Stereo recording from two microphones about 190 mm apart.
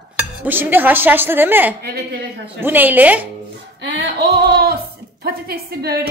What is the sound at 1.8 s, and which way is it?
Speech, 60° right (ahead or behind).